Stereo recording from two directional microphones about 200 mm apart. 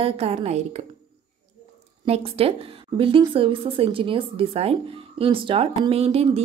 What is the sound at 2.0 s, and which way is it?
A woman's voice, 30° right (ahead or behind).